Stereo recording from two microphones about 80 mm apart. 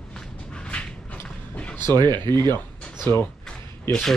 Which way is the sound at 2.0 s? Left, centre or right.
Right.